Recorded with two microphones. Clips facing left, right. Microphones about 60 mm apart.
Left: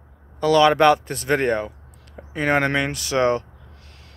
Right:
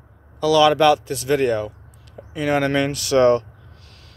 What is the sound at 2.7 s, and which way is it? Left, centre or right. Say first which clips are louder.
Speech: right 4 dB; left.